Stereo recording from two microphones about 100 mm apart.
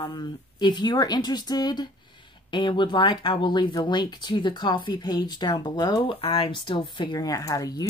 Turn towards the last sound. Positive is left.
turn(degrees=40)  # may be behind; listen again after turning